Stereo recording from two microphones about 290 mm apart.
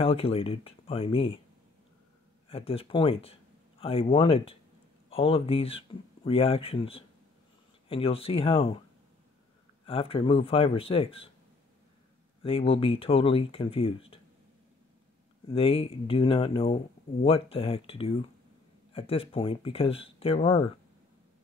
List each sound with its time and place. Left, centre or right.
0.0 s speech: centre
2.5 s speech: centre
9.8 s speech: centre
12.4 s speech: centre
15.5 s speech: centre